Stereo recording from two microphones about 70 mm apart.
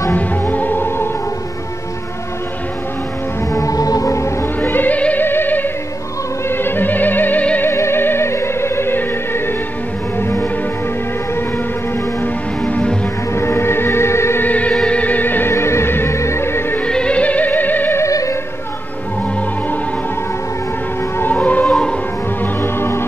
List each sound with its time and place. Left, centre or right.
0.1 s music: left
3.5 s music: left
4.6 s music: left
7.6 s music: left
12.6 s music: centre
13.3 s music: left
14.4 s music: left
15.5 s music: left
16.8 s music: centre
17.9 s music: left
21.2 s music: left
21.6 s music: centre
22.4 s music: left